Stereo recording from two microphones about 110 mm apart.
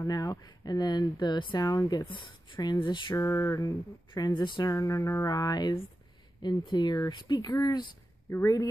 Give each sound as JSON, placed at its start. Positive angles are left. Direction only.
{"t": 0.0, "sound": "speech", "side_deg": 35}
{"t": 3.2, "sound": "speech", "side_deg": 25}
{"t": 8.3, "sound": "speech", "side_deg": 25}